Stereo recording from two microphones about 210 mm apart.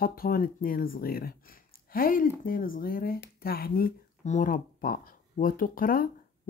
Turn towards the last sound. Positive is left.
turn(degrees=45)  # may be behind; listen again after turning